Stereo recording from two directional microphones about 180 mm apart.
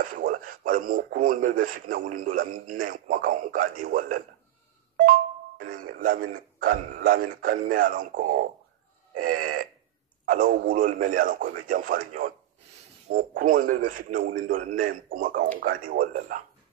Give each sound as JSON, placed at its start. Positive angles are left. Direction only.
{"t": 0.0, "sound": "speech", "side_deg": -50}
{"t": 13.4, "sound": "speech", "side_deg": -50}